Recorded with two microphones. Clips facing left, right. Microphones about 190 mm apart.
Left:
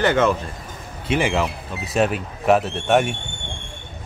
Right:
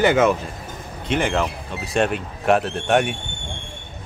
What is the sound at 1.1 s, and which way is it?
Speech, 5° left (ahead or behind).